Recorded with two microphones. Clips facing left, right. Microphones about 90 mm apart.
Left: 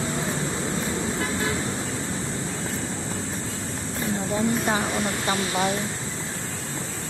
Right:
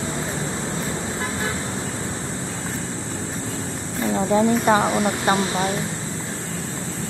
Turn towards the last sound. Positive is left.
turn(degrees=-25)  # may be behind; listen again after turning